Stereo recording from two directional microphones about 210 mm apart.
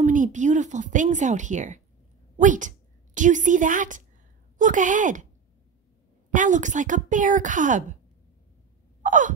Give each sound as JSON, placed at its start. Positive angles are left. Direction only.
{"t": 0.0, "sound": "speech", "side_deg": -35}
{"t": 6.3, "sound": "speech", "side_deg": -35}
{"t": 9.0, "sound": "sigh", "side_deg": -35}